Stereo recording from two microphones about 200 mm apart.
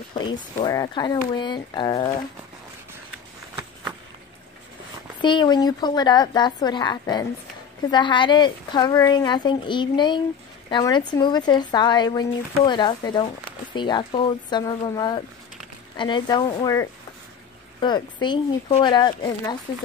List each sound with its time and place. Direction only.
0.7 s speech: 20° left (ahead or behind)
5.2 s speech: 20° left (ahead or behind)